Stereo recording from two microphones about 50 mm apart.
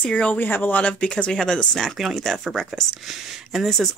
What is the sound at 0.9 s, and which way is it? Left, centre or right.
Speech, centre.